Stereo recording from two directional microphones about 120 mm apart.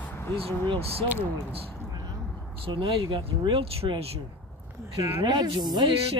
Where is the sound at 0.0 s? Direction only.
20° left (ahead or behind).